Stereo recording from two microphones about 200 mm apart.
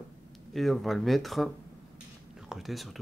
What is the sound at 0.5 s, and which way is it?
Speech, centre (ahead or behind).